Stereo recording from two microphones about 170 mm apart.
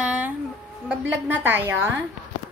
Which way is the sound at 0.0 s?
10° right (ahead or behind).